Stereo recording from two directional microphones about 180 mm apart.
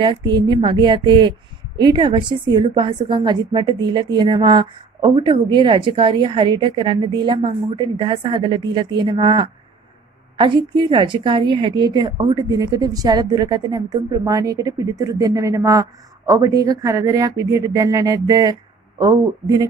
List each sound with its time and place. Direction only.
0.0 s a woman's voice: 25° right (ahead or behind)